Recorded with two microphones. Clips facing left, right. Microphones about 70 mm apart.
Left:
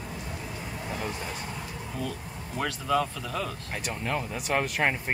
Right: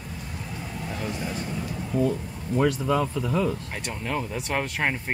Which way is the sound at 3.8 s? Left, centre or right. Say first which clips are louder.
Even; centre.